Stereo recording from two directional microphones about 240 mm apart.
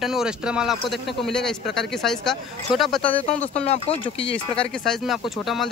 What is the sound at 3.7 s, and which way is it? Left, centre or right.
Speech, left.